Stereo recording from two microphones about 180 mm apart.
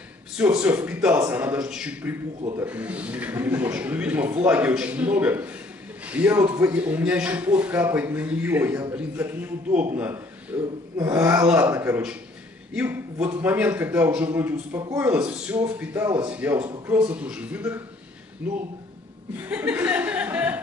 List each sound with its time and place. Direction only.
0.4 s a man's voice: 5° right (ahead or behind)
16.5 s speech: 20° right (ahead or behind)
16.9 s a man's voice: 5° right (ahead or behind)